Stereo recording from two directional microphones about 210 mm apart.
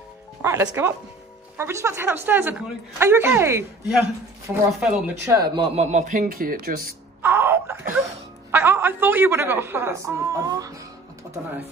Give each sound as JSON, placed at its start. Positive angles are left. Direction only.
{"t": 0.4, "sound": "a man's voice", "side_deg": -15}
{"t": 5.3, "sound": "speech", "side_deg": -20}
{"t": 5.9, "sound": "speech", "side_deg": -35}
{"t": 7.2, "sound": "wail", "side_deg": -10}
{"t": 7.9, "sound": "a sound", "side_deg": -10}